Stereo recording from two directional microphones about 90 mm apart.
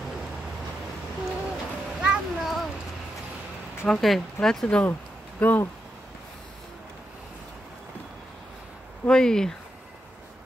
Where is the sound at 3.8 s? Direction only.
5° left (ahead or behind); by 5.7 s 20° left (ahead or behind).